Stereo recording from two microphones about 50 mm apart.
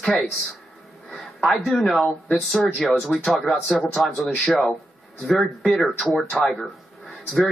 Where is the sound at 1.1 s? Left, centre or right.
Centre.